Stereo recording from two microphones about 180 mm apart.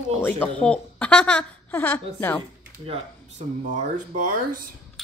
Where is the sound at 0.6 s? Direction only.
5° left (ahead or behind).